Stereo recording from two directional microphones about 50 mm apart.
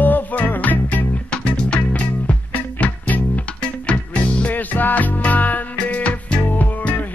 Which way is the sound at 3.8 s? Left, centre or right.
Left.